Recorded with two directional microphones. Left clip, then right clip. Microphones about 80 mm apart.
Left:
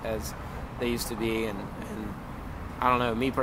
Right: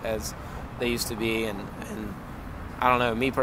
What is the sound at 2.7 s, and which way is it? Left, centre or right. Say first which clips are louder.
Speech: right 2 dB; right.